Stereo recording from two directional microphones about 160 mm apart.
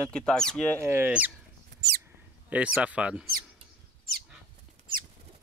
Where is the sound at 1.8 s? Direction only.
90° right.